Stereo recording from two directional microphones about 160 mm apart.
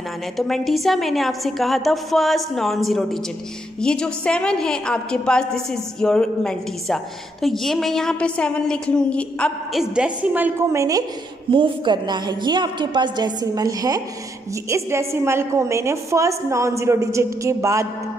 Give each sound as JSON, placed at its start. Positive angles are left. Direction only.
{"t": 0.4, "sound": "a woman's voice", "side_deg": 0}
{"t": 11.5, "sound": "a woman's voice", "side_deg": -30}